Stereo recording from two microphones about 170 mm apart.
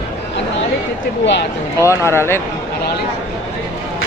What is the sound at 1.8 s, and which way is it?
Speech, 15° left (ahead or behind).